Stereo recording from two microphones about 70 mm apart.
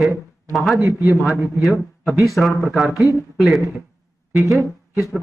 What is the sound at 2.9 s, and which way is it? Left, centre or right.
Speech, left.